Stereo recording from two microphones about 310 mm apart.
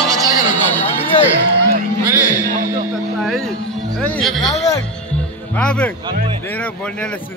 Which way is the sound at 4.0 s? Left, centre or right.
Centre.